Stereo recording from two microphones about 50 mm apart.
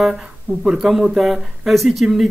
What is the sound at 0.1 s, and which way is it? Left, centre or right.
Speech, centre.